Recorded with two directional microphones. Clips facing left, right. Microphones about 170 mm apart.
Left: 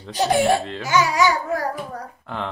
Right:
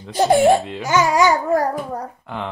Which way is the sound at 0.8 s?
45° right (ahead or behind).